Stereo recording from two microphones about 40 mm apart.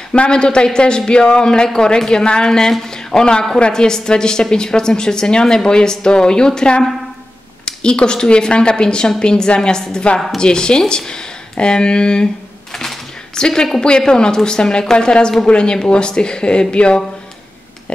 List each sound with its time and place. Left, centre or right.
0.1 s a woman's voice: left
13.4 s a woman's voice: centre